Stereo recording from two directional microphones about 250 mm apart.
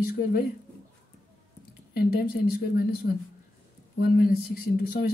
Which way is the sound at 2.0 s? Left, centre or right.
Left.